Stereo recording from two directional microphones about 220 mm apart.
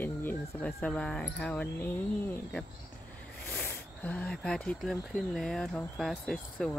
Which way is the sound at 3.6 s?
5° left (ahead or behind).